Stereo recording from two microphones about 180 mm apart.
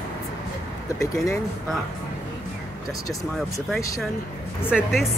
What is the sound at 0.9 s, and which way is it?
Speech, 15° left (ahead or behind).